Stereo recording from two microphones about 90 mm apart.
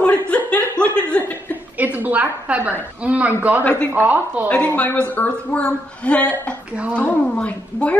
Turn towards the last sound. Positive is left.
turn(degrees=15)  # may be behind; listen again after turning